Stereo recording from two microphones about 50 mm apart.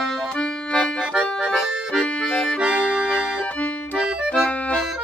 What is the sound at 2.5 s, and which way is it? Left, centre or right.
Accordion, right.